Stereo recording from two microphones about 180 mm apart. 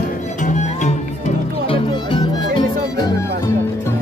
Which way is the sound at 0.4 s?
40° left (ahead or behind).